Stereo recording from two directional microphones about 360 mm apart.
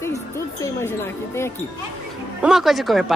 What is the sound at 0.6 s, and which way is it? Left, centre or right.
Speech, centre.